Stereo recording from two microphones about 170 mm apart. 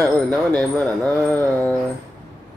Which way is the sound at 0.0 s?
5° left (ahead or behind).